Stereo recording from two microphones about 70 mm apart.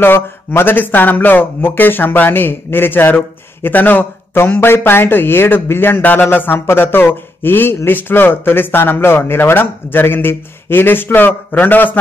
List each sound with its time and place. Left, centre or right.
0.0 s speech: left